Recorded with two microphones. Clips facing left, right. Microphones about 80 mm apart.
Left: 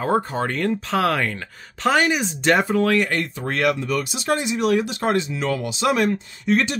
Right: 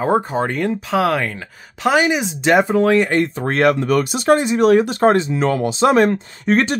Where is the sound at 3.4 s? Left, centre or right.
Right.